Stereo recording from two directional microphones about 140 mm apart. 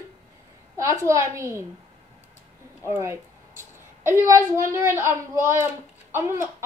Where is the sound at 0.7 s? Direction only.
20° right (ahead or behind).